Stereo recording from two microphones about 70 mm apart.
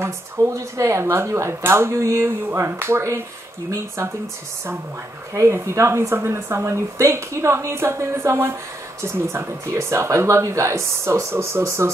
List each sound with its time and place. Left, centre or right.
0.0 s speech: right
5.3 s speech: right